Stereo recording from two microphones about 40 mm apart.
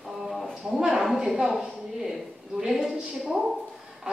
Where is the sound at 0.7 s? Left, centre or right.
Centre.